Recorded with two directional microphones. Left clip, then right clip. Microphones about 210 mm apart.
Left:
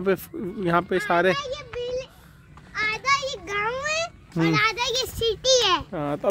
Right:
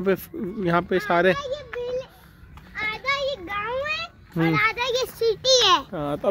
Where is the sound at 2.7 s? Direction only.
25° left (ahead or behind).